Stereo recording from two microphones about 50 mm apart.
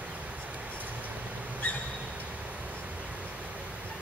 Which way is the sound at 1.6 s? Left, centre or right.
Left.